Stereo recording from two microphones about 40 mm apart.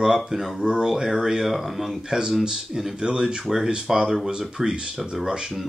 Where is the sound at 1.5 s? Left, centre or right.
Centre.